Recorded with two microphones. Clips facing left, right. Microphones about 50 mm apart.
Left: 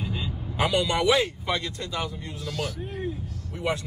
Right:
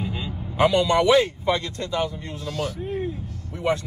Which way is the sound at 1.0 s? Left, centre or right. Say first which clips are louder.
Right 5 dB; right.